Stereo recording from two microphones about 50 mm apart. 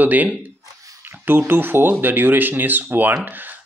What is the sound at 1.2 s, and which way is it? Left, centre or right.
Speech, right.